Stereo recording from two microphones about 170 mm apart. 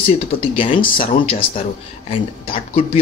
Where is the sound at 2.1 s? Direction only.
35° left (ahead or behind).